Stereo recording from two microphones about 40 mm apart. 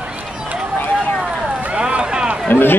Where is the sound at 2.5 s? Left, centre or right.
Left.